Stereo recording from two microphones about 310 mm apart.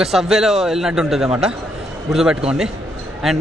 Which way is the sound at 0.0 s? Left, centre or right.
Centre.